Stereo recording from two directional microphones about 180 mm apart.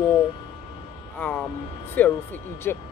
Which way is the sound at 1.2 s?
10° left (ahead or behind).